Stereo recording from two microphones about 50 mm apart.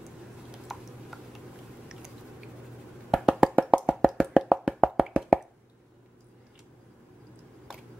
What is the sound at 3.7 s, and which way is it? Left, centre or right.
Plop, centre.